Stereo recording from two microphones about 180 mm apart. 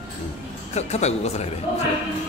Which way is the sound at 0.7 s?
35° left (ahead or behind).